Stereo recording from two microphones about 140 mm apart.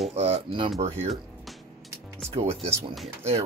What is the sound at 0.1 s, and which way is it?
Speech, 50° right (ahead or behind).